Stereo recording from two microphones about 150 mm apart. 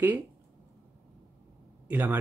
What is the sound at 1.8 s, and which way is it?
Speech, 10° right (ahead or behind).